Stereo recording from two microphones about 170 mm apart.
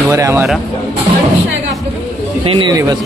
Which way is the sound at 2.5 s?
25° right (ahead or behind).